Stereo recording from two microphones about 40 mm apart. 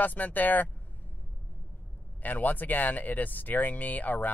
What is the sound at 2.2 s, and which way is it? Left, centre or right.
Speech, left.